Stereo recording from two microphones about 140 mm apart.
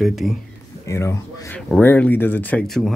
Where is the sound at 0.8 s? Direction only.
20° left (ahead or behind).